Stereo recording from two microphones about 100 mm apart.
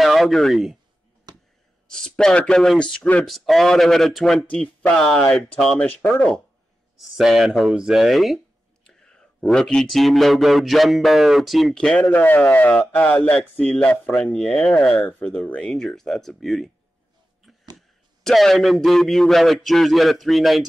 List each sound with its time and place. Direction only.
0.0 s speech: centre (ahead or behind)
1.3 s a sound: 40° right (ahead or behind)
1.9 s speech: 5° left (ahead or behind)
7.0 s speech: centre (ahead or behind)
17.7 s speech: centre (ahead or behind)